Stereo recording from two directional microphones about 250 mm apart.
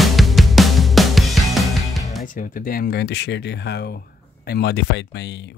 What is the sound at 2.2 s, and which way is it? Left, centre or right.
Speech, left.